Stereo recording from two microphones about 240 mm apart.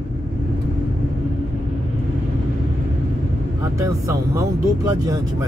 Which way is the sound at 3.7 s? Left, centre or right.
Centre.